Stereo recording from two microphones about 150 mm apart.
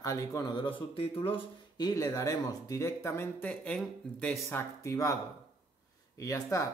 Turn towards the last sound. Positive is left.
turn(degrees=20)  # may be behind; listen again after turning